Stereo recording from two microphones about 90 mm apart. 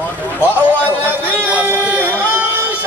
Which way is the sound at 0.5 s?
20° right (ahead or behind).